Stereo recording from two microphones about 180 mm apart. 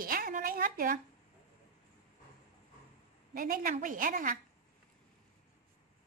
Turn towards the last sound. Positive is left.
turn(degrees=-50)  # may be behind; listen again after turning